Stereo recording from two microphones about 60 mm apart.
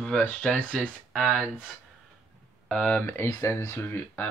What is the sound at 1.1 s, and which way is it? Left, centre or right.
Speech, centre.